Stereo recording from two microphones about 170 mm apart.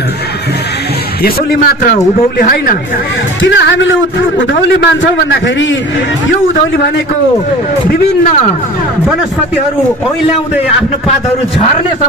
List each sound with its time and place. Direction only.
2.3 s speech: 60° left (ahead or behind)
3.4 s a man's voice: 90° left